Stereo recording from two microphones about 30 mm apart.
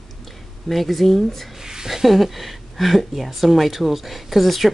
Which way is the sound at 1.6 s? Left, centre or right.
Centre.